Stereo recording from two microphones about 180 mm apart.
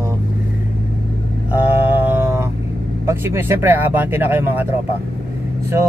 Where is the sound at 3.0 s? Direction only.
15° right (ahead or behind).